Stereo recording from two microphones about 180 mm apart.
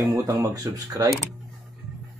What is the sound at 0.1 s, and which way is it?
Speech, 20° right (ahead or behind).